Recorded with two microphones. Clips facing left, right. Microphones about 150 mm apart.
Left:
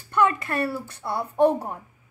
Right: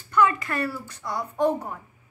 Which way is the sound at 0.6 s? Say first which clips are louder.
Left 2 dB; 30° left (ahead or behind).